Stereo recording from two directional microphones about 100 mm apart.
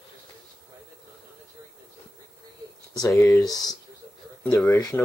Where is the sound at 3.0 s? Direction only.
30° left (ahead or behind).